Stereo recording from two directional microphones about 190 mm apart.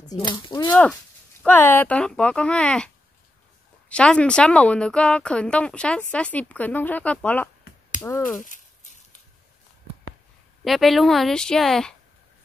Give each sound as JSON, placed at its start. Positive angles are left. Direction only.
{"t": 0.1, "sound": "speech", "side_deg": 25}
{"t": 1.4, "sound": "speech", "side_deg": 10}
{"t": 3.9, "sound": "speech", "side_deg": 5}
{"t": 8.4, "sound": "speech", "side_deg": 45}
{"t": 10.6, "sound": "speech", "side_deg": 0}